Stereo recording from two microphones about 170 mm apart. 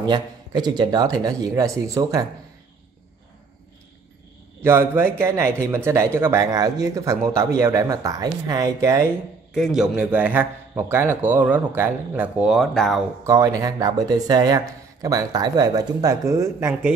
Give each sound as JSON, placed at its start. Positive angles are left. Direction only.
{"t": 0.0, "sound": "speech", "side_deg": -25}
{"t": 4.6, "sound": "speech", "side_deg": -15}
{"t": 9.5, "sound": "speech", "side_deg": 0}
{"t": 13.2, "sound": "speech", "side_deg": -20}